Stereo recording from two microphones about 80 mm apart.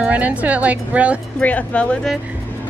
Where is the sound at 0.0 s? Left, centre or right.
Centre.